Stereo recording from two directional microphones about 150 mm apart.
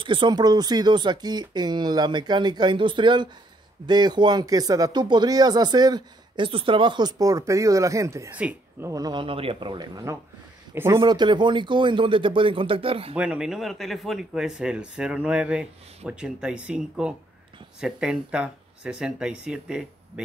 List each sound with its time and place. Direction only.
0.0 s speech: 30° right (ahead or behind)
8.4 s speech: 10° right (ahead or behind)
8.9 s speech: 25° right (ahead or behind)
11.0 s speech: 30° right (ahead or behind)
13.1 s speech: 10° right (ahead or behind)